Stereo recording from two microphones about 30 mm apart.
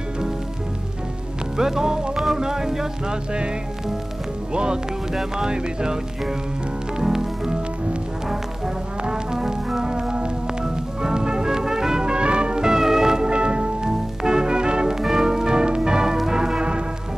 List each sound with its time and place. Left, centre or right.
1.6 s music: centre
4.5 s speech: right
5.3 s music: right
9.0 s music: right
12.1 s music: right
12.6 s music: centre
13.3 s music: right
13.8 s music: right